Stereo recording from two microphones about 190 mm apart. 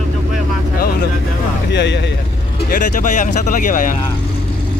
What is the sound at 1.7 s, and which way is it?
Speech, 65° left (ahead or behind).